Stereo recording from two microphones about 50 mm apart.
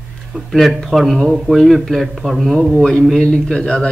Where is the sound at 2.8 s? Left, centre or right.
Centre.